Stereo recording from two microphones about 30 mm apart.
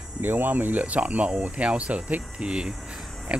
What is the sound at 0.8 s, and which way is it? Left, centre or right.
Speech, right.